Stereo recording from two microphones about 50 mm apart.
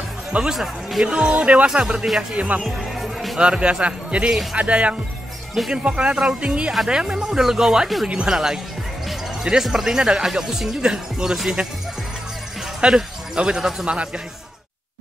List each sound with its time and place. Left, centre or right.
0.3 s speech: right
2.6 s music: centre
3.3 s speech: right
12.8 s speech: centre
13.8 s speech: right